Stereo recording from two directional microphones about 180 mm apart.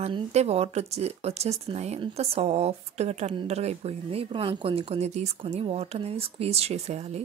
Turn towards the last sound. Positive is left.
turn(degrees=-35)  # may be behind; listen again after turning